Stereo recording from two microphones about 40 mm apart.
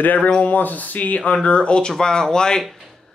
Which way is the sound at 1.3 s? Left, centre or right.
Left.